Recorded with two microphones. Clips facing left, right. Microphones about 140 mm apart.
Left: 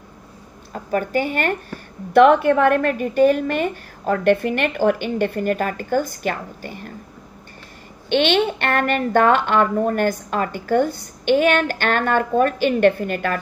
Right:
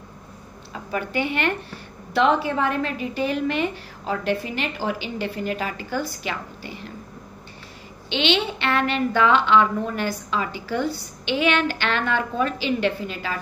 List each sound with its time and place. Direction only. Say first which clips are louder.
0.7 s a woman's voice: left 5 dB; 45° left (ahead or behind)
8.1 s a woman's voice: left 5 dB; 50° left (ahead or behind)